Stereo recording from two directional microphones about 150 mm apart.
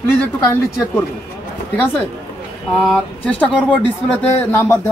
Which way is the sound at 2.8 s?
5° left (ahead or behind).